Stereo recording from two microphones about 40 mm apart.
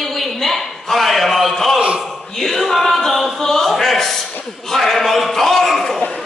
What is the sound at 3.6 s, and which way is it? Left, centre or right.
Speech, centre.